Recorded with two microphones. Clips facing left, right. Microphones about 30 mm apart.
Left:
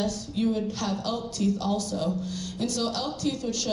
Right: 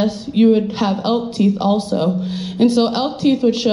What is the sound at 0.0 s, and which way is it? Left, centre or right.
Speech, right.